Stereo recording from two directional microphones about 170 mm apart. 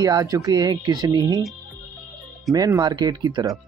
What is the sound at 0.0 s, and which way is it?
Speech, 20° right (ahead or behind).